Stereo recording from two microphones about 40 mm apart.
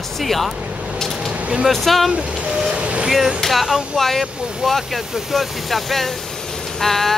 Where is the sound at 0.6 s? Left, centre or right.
Right.